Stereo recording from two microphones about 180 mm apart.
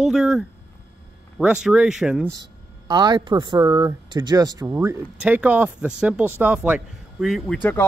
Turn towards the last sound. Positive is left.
turn(degrees=0)  # may be behind; listen again after turning